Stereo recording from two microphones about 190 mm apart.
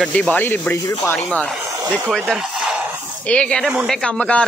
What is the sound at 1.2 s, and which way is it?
Speech, 5° left (ahead or behind).